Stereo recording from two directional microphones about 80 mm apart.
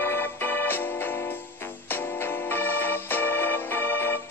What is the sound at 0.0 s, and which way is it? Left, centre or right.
Music, left.